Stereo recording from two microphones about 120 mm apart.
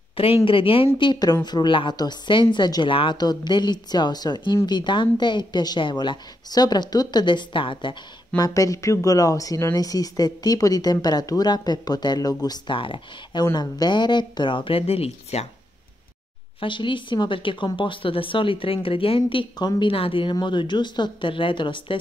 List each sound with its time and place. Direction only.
0.2 s speech: 50° left (ahead or behind)
0.9 s speech: 40° left (ahead or behind)
8.4 s speech: 30° left (ahead or behind)
12.7 s speech: 45° left (ahead or behind)
16.5 s speech: 45° left (ahead or behind)